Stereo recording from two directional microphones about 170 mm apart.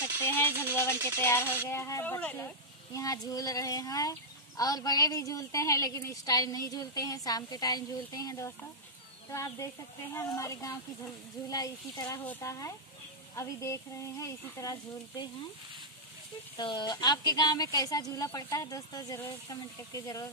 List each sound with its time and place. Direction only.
0.0 s speech: 10° left (ahead or behind)
16.5 s speech: 25° left (ahead or behind)